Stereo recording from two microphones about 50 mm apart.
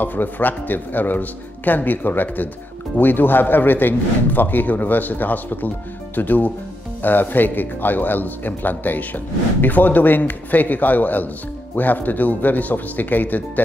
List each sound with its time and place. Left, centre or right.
0.0 s a man's voice: left